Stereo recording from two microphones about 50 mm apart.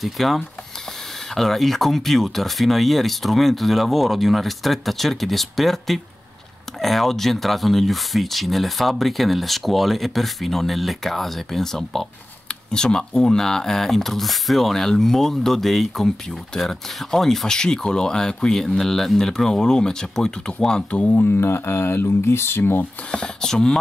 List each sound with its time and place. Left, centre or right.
0.0 s speech: centre
21.1 s speech: left
23.1 s speech: centre